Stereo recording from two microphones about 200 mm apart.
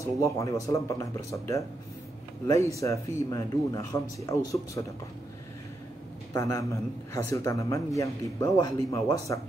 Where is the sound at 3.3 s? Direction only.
15° left (ahead or behind).